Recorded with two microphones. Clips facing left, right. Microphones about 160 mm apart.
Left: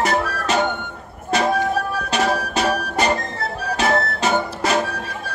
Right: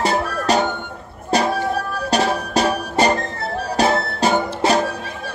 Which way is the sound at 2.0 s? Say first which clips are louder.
Right 4 dB; 35° right (ahead or behind).